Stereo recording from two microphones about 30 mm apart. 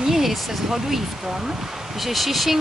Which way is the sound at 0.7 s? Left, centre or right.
Centre.